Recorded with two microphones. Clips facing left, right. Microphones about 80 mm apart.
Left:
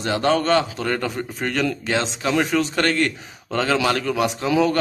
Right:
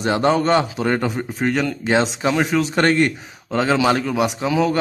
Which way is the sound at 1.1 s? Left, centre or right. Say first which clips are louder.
Right 4 dB; centre.